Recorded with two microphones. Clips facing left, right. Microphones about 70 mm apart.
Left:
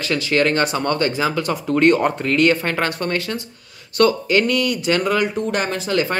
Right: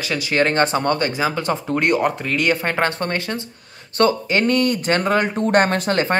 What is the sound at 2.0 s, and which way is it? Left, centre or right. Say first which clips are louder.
Speech: left 3 dB; centre.